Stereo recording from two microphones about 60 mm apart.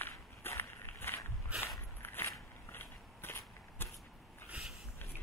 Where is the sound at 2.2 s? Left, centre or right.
Left.